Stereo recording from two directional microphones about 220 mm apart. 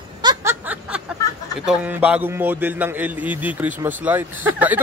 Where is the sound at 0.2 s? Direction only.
15° right (ahead or behind).